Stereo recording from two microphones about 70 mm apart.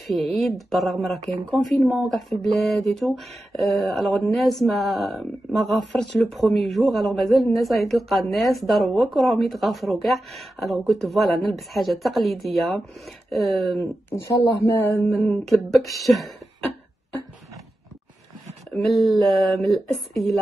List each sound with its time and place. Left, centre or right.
0.0 s speech: centre
14.8 s mantra: left
15.1 s speech: centre
18.7 s speech: centre